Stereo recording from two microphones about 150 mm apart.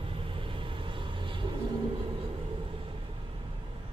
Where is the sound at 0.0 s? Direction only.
35° right (ahead or behind).